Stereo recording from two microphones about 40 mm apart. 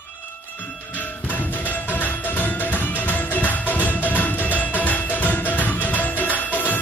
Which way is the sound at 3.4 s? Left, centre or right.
Left.